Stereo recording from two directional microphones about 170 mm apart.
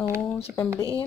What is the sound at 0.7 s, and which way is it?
Speech, 20° right (ahead or behind).